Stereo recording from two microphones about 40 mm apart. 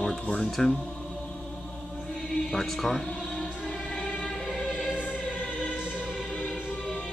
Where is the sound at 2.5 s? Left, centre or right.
Centre.